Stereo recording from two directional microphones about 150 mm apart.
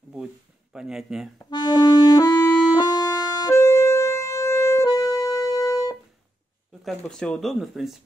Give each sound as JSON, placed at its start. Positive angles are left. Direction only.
{"t": 0.7, "sound": "speech", "side_deg": -5}
{"t": 1.4, "sound": "music", "side_deg": 30}
{"t": 6.8, "sound": "speech", "side_deg": 0}